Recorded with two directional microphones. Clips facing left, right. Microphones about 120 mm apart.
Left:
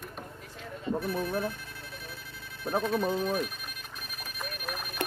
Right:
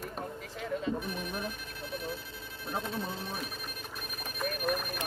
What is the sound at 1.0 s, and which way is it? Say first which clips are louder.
Ringtone: left 6 dB; 15° right (ahead or behind).